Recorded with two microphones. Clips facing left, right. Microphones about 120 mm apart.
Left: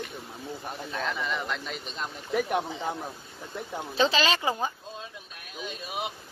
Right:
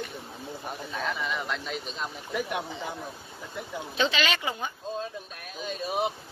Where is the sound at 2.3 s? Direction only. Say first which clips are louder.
Left 4 dB; 45° left (ahead or behind).